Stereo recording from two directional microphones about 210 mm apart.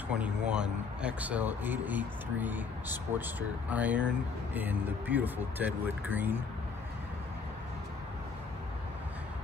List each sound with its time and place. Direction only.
0.1 s speech: 5° right (ahead or behind)